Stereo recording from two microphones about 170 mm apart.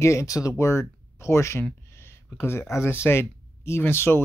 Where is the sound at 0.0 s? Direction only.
15° left (ahead or behind).